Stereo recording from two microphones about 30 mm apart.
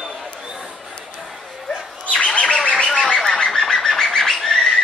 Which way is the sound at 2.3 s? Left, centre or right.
Left.